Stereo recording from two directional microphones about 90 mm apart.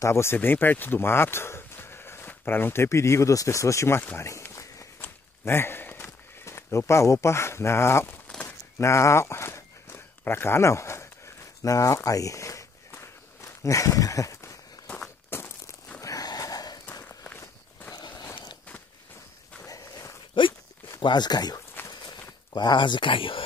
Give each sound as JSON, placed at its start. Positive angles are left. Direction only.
{"t": 0.0, "sound": "speech", "side_deg": 30}
{"t": 4.2, "sound": "walk", "side_deg": 30}
{"t": 8.3, "sound": "a sound", "side_deg": 15}
{"t": 8.7, "sound": "walk", "side_deg": 30}
{"t": 12.9, "sound": "a sound", "side_deg": 30}
{"t": 15.2, "sound": "walk", "side_deg": 25}
{"t": 16.0, "sound": "wheeze", "side_deg": 40}
{"t": 17.2, "sound": "walk", "side_deg": 20}
{"t": 17.9, "sound": "a sound", "side_deg": 55}
{"t": 19.6, "sound": "walk", "side_deg": 35}
{"t": 21.0, "sound": "speech", "side_deg": 55}
{"t": 21.9, "sound": "a sound", "side_deg": 50}